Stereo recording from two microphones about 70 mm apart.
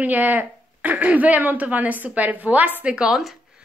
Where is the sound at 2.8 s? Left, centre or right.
Centre.